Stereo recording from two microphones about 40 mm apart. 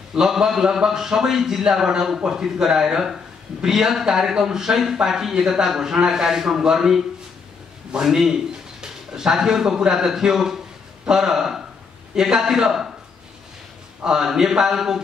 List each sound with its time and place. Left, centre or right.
0.1 s a man's voice: centre
14.0 s a man's voice: centre